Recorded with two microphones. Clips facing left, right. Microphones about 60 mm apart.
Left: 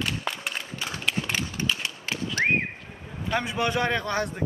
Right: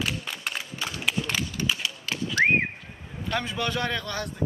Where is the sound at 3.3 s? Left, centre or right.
Centre.